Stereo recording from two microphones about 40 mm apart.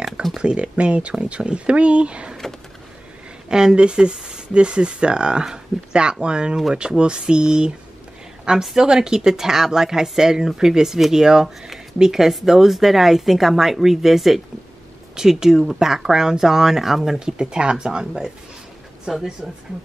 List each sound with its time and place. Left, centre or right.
0.4 s speech: right
3.4 s speech: centre
8.7 s speech: centre
11.4 s speech: centre
17.4 s speech: right